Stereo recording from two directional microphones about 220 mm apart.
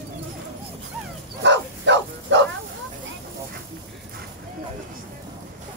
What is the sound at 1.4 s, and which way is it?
Bow-wow, 55° right (ahead or behind).